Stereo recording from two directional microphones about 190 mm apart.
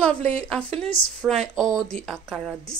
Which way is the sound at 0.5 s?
5° left (ahead or behind).